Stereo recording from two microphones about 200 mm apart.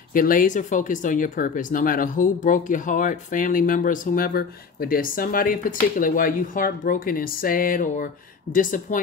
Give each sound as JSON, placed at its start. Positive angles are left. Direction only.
{"t": 0.1, "sound": "speech", "side_deg": 45}